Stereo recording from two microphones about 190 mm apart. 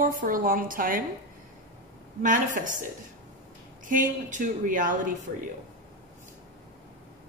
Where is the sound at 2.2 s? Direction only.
45° right (ahead or behind).